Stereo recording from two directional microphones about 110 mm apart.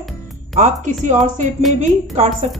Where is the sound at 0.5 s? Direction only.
90° right.